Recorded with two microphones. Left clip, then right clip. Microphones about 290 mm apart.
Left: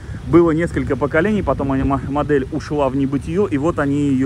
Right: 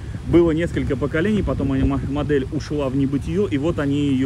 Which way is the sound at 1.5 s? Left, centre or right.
Left.